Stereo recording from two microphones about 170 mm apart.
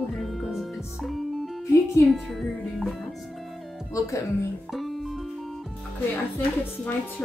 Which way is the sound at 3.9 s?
20° left (ahead or behind).